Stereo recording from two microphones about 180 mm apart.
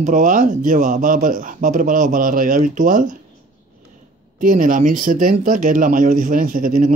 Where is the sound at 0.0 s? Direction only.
45° right (ahead or behind).